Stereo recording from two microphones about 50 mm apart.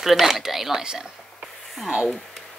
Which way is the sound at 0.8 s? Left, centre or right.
Centre.